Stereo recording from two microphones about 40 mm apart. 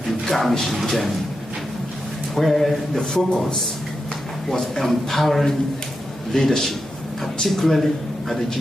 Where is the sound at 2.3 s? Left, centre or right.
Centre.